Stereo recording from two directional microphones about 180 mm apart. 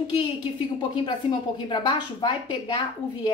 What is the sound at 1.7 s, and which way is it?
Speech, 25° left (ahead or behind).